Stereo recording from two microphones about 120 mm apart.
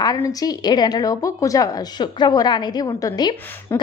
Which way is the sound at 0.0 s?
30° left (ahead or behind).